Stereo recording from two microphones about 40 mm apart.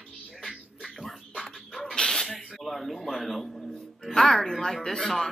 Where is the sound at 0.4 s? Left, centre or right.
Centre.